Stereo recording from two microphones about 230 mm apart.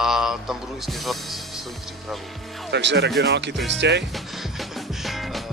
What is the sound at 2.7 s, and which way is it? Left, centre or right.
Speech, right.